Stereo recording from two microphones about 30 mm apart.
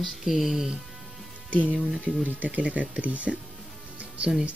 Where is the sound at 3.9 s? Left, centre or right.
Right.